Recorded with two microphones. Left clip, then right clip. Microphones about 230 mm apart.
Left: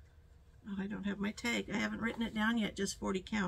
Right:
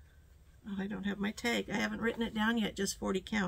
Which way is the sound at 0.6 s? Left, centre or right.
Centre.